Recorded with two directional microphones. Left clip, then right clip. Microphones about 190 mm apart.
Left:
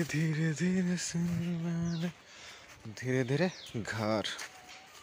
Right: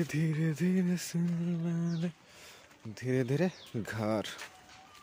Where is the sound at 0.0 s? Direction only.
25° right (ahead or behind).